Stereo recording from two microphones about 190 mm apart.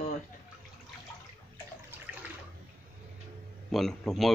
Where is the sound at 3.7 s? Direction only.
Centre (ahead or behind).